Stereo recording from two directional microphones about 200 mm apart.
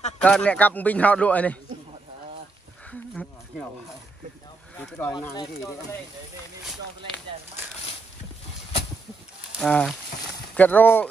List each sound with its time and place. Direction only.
0.2 s a man's voice: 5° left (ahead or behind)
4.7 s a man's voice: 10° left (ahead or behind)
9.6 s speech: 5° left (ahead or behind)